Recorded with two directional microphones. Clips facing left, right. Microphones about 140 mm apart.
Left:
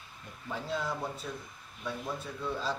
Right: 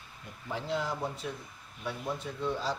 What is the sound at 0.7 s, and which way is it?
Speech, 15° right (ahead or behind).